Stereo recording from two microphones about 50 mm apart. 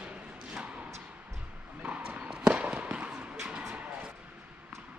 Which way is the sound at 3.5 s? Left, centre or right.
Centre.